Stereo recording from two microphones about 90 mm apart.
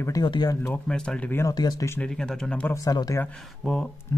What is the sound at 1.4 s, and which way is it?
Speech, 45° left (ahead or behind).